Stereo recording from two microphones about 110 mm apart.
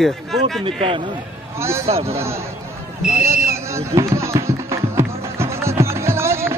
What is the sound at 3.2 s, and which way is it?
Music, 25° right (ahead or behind).